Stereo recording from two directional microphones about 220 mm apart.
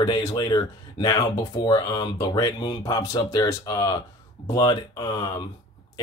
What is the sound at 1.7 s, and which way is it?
Speech, 20° left (ahead or behind).